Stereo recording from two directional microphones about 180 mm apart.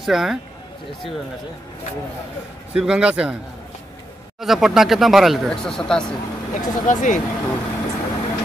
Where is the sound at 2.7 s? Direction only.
5° right (ahead or behind).